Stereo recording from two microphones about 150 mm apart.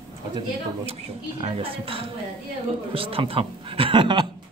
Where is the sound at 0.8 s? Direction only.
40° right (ahead or behind).